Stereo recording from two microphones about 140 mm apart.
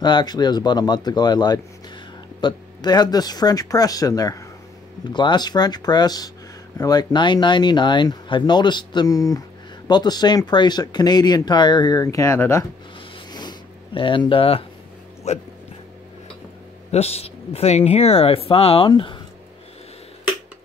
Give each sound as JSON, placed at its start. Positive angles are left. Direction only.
{"t": 0.0, "sound": "speech", "side_deg": 30}
{"t": 13.3, "sound": "a sound", "side_deg": 30}
{"t": 15.3, "sound": "speech", "side_deg": 50}
{"t": 16.9, "sound": "speech", "side_deg": 50}